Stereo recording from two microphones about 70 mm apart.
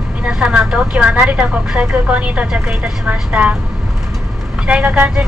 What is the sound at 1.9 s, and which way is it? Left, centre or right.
A woman's voice, centre.